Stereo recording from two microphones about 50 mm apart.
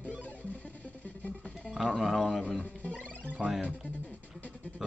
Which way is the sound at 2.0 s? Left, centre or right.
Centre.